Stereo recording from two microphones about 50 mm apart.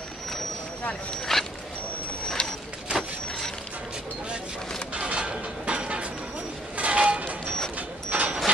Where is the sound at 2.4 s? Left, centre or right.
Left.